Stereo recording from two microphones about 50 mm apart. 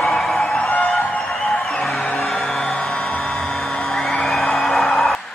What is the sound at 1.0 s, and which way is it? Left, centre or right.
Music, centre.